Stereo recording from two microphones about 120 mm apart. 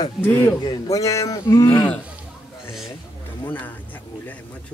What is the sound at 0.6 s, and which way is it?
Speech, 30° left (ahead or behind).